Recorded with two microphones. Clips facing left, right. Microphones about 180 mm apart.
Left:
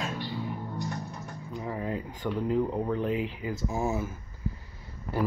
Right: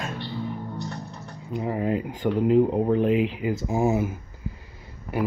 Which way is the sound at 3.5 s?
15° right (ahead or behind).